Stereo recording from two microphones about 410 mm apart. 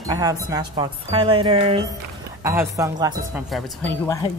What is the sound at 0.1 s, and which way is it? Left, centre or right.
Speech, centre.